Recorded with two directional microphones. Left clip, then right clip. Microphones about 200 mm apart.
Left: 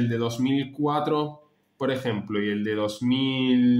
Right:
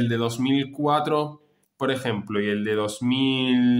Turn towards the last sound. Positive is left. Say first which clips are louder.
# right 1 dB
turn(degrees=-15)  # may be behind; listen again after turning